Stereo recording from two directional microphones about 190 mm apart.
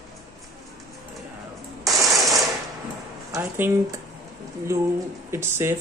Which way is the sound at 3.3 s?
15° right (ahead or behind).